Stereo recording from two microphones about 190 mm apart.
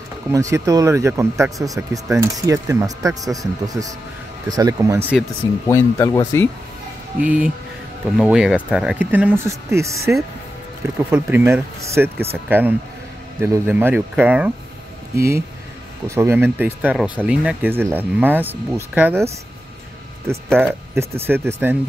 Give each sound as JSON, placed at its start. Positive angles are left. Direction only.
{"t": 0.3, "sound": "speech", "side_deg": -15}
{"t": 5.7, "sound": "speech", "side_deg": 15}
{"t": 7.2, "sound": "speech", "side_deg": -5}
{"t": 11.1, "sound": "speech", "side_deg": -10}
{"t": 20.5, "sound": "speech", "side_deg": -10}